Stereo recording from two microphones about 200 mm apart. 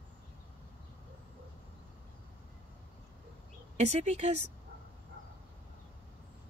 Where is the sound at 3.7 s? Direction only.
35° right (ahead or behind).